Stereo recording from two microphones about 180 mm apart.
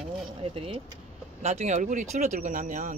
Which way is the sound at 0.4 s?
30° right (ahead or behind).